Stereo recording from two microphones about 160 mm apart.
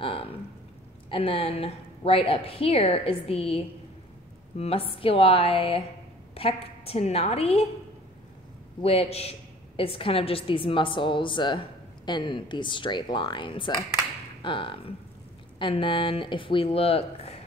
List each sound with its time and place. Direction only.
0.0 s a woman's voice: 35° left (ahead or behind)
8.8 s a woman's voice: 40° left (ahead or behind)